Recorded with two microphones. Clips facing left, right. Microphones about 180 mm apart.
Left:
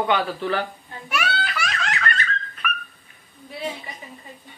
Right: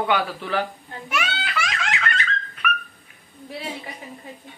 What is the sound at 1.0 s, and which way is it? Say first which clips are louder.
Belly laugh: left 2 dB; 20° right (ahead or behind).